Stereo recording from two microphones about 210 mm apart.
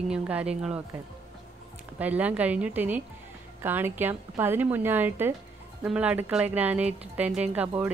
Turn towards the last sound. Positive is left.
turn(degrees=-5)  # may be behind; listen again after turning